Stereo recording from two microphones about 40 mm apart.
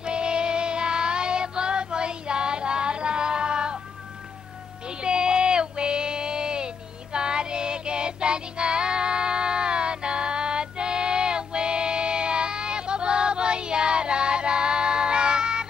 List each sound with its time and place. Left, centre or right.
0.0 s music: right
4.8 s child singing: right